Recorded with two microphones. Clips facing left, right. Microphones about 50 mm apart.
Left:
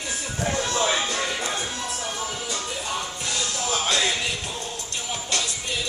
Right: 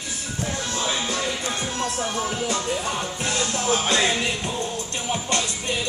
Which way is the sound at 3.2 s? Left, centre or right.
Right.